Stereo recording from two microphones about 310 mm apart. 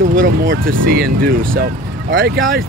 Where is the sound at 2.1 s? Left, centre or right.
Right.